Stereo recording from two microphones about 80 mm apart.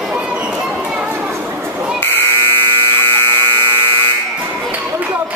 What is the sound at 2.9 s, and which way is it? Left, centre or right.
Electric toothbrush, left.